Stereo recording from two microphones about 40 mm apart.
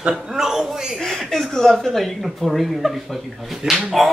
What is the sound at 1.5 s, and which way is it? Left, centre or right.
Music, centre.